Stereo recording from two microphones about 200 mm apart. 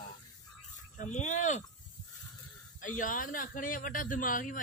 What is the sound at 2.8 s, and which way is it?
Speech, 40° left (ahead or behind).